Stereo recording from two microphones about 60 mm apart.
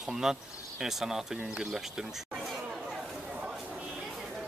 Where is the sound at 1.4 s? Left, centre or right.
Centre.